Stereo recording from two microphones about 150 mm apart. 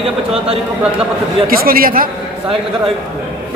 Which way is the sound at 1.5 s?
75° right (ahead or behind).